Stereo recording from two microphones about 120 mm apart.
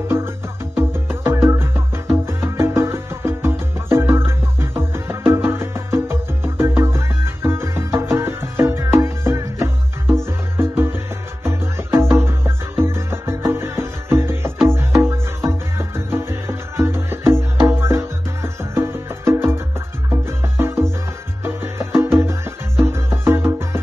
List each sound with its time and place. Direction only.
0.7 s music: 20° right (ahead or behind)
11.4 s music: 20° right (ahead or behind)